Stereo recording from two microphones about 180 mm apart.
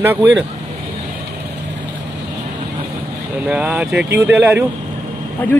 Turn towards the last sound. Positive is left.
turn(degrees=10)  # may be behind; listen again after turning